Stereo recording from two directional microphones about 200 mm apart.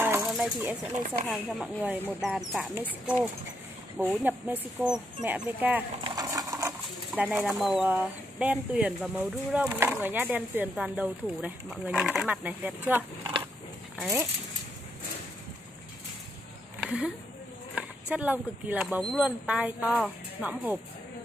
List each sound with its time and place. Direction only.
0.2 s a sound: centre (ahead or behind)
1.3 s speech: 5° right (ahead or behind)
6.0 s sewing machine: 20° right (ahead or behind)
7.2 s speech: 5° right (ahead or behind)
16.8 s speech: 5° right (ahead or behind)